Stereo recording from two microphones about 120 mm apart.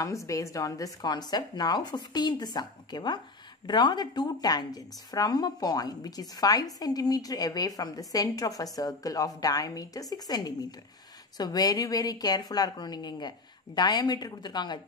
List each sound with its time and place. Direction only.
0.0 s a woman's voice: 25° left (ahead or behind)